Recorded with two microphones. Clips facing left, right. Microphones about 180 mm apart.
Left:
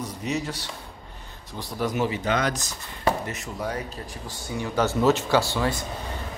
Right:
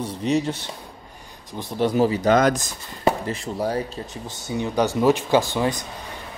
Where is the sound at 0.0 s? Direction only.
30° right (ahead or behind).